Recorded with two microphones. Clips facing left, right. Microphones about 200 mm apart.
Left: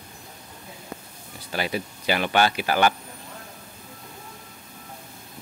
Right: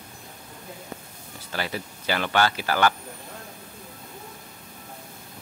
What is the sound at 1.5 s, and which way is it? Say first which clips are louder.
Speech: left 3 dB; 15° left (ahead or behind).